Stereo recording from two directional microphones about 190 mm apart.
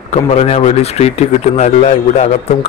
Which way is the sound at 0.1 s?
35° left (ahead or behind).